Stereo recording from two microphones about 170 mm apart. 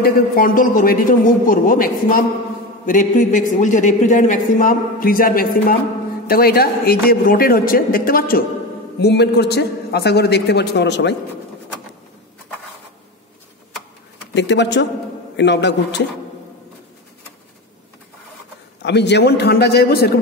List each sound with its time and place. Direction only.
0.0 s a man's voice: 55° left (ahead or behind)
9.0 s a man's voice: 75° left (ahead or behind)
14.3 s a man's voice: 90° left
18.8 s a man's voice: 90° left; by 20.2 s 65° left (ahead or behind)